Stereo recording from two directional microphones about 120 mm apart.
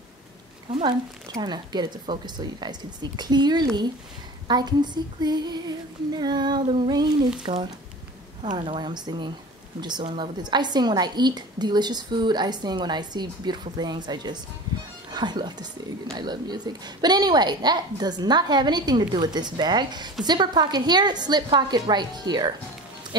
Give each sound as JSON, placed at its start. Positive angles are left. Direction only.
{"t": 1.4, "sound": "a woman's voice", "side_deg": -35}
{"t": 8.5, "sound": "a woman's voice", "side_deg": -45}